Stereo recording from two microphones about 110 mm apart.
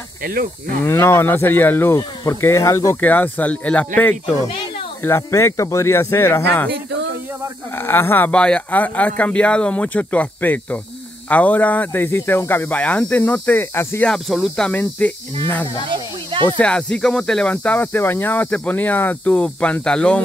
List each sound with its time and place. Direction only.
0.8 s speech: 25° left (ahead or behind)
3.0 s speech: 15° left (ahead or behind)
7.7 s speech: 20° left (ahead or behind)
14.0 s speech: centre (ahead or behind)
14.7 s speech: 15° left (ahead or behind)
15.9 s snake: 50° right (ahead or behind)
16.4 s speech: 10° left (ahead or behind)